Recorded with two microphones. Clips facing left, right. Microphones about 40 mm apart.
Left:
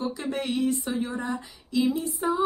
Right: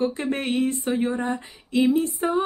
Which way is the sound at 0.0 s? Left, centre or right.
Right.